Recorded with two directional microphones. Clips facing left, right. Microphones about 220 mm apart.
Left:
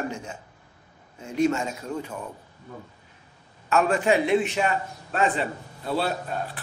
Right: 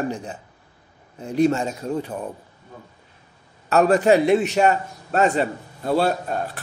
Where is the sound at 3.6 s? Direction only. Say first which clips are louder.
Right 6 dB; 40° right (ahead or behind).